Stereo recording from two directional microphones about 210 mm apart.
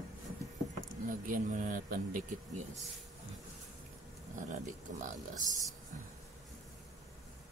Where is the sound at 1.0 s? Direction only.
40° right (ahead or behind).